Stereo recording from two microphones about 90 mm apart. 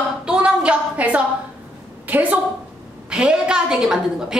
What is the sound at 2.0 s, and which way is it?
A woman's voice, 20° right (ahead or behind).